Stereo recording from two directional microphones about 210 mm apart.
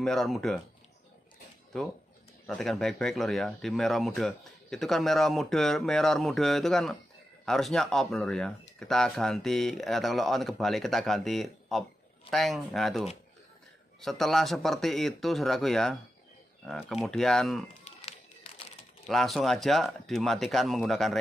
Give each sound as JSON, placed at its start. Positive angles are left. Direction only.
{"t": 0.0, "sound": "speech", "side_deg": 0}
{"t": 2.4, "sound": "speech", "side_deg": 0}
{"t": 17.8, "sound": "run", "side_deg": 30}
{"t": 19.0, "sound": "speech", "side_deg": 0}